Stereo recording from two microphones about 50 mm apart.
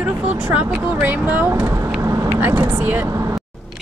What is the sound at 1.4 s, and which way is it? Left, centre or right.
Speech, right.